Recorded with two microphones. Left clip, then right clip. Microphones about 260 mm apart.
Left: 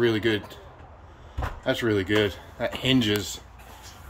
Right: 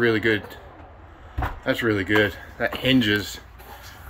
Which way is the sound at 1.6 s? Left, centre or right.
Centre.